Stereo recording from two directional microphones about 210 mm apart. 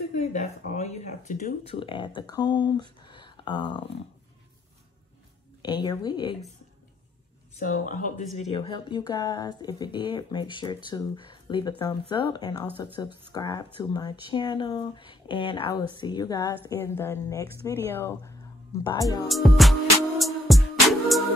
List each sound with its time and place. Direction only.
0.2 s speech: 35° left (ahead or behind)
5.6 s speech: 20° left (ahead or behind)
7.8 s a woman's voice: 35° left (ahead or behind); by 19.2 s 15° left (ahead or behind)
19.2 s music: centre (ahead or behind)